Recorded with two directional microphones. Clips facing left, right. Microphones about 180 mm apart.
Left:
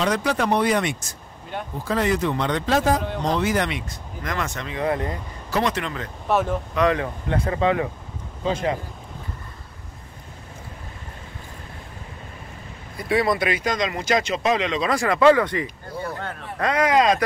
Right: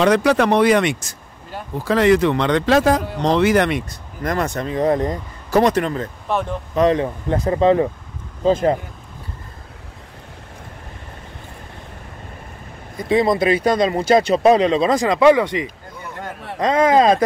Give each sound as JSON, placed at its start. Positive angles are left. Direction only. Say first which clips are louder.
{"t": 0.0, "sound": "speech", "louder": "right 7 dB", "side_deg": -70}
{"t": 3.9, "sound": "speech", "louder": "right 6 dB", "side_deg": -40}
{"t": 6.2, "sound": "speech", "louder": "left 2 dB", "side_deg": 0}
{"t": 6.7, "sound": "speech", "louder": "right 7 dB", "side_deg": -35}
{"t": 12.9, "sound": "speech", "louder": "right 4 dB", "side_deg": -25}
{"t": 14.9, "sound": "speech", "louder": "right 1 dB", "side_deg": -20}
{"t": 15.9, "sound": "a sound", "louder": "left 5 dB", "side_deg": 35}
{"t": 16.5, "sound": "speech", "louder": "right 5 dB", "side_deg": -25}